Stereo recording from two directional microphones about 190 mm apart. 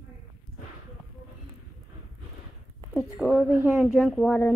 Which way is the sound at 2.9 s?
5° right (ahead or behind).